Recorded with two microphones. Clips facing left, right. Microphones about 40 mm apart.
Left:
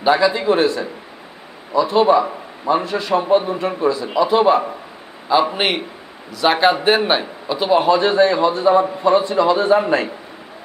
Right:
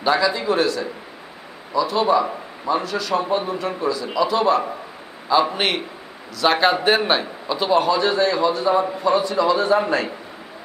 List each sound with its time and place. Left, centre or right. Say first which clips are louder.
0.0 s a man's voice: left 4 dB; centre
7.8 s a man's voice: left 4 dB; left